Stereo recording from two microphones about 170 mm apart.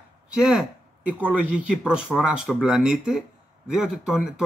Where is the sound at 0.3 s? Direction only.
5° right (ahead or behind).